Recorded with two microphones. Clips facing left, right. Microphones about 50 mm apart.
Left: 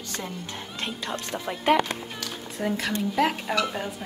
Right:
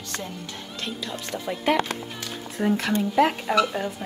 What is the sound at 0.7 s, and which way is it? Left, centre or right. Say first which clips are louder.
Speech: even; left.